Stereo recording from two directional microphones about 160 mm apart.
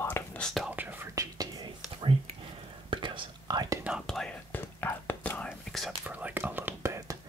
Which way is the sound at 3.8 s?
5° right (ahead or behind).